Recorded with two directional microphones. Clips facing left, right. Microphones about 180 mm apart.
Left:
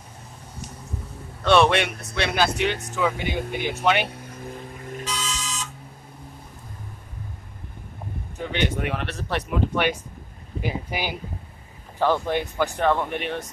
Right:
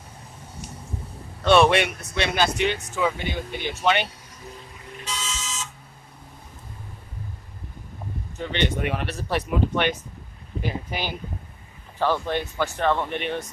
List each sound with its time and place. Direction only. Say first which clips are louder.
1.4 s speech: right 1 dB; 5° right (ahead or behind)
4.1 s vehicle: left 6 dB; 55° left (ahead or behind)
5.0 s a sound: left 1 dB; 25° right (ahead or behind)
8.4 s speech: even; 5° left (ahead or behind)
10.6 s speech: left 1 dB; 10° left (ahead or behind)